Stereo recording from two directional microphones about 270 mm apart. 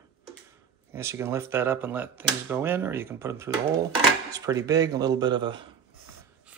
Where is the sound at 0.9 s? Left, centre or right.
Centre.